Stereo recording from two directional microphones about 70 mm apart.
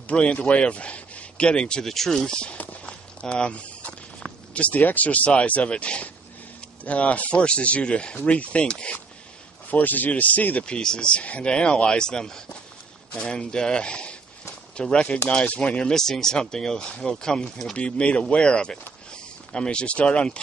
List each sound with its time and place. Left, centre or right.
0.0 s speech: centre
15.9 s speech: centre